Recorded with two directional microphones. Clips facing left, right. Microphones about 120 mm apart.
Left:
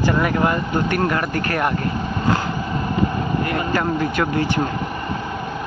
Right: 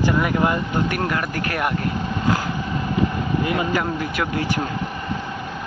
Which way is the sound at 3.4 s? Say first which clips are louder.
Right 1 dB; 10° right (ahead or behind).